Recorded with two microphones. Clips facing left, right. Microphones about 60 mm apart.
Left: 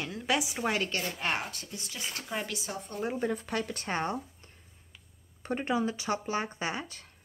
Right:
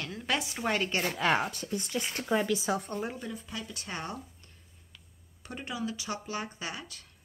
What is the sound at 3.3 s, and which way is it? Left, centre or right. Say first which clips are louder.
Speech: left 7 dB; left.